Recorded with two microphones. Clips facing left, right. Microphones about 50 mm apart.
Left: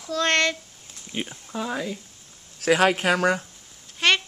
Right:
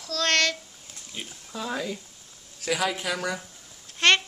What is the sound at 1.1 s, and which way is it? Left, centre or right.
Speech, left.